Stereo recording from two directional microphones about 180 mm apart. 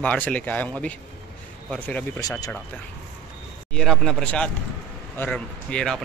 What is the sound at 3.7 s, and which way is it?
Speech, centre (ahead or behind).